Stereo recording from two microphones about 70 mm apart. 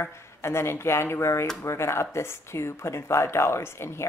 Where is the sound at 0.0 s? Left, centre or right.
Left.